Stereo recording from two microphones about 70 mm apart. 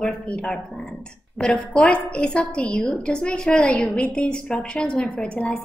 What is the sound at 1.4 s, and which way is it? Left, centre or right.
A woman's voice, centre.